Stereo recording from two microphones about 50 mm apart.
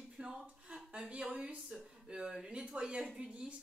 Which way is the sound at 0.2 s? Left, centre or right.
Right.